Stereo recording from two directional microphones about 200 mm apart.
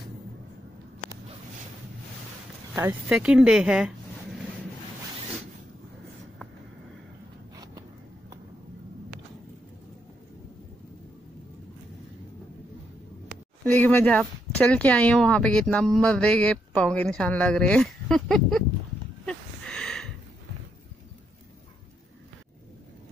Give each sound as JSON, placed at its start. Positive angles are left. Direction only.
{"t": 2.7, "sound": "speech", "side_deg": -10}
{"t": 13.7, "sound": "speech", "side_deg": 10}
{"t": 19.2, "sound": "a sound", "side_deg": 5}